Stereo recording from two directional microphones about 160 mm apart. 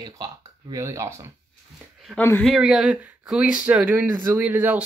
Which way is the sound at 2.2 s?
10° left (ahead or behind).